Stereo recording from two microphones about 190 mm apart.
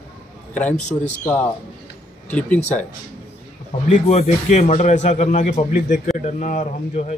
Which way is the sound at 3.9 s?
35° left (ahead or behind).